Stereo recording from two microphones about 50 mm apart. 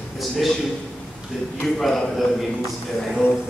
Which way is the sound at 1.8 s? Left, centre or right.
Centre.